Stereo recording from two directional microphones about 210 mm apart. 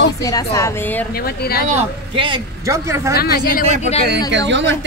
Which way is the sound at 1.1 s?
45° left (ahead or behind).